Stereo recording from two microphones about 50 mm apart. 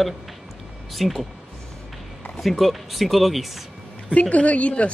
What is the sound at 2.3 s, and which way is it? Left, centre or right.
Speech, centre.